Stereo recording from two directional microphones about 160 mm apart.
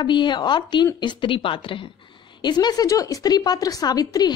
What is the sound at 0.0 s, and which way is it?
A woman's voice, 30° left (ahead or behind).